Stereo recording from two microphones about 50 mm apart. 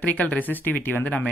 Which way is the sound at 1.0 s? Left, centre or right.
Left.